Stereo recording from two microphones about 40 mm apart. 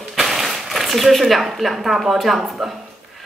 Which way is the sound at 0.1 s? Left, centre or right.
Centre.